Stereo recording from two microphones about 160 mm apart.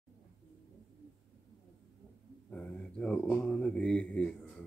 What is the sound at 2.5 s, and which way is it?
Speech, 5° left (ahead or behind).